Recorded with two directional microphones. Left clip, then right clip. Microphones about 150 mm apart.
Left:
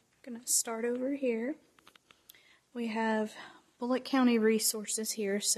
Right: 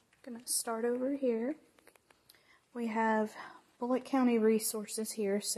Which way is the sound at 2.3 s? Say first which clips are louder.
Even; 40° left (ahead or behind).